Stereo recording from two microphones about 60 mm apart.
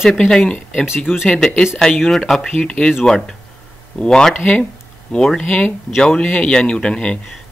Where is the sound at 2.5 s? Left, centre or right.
Centre.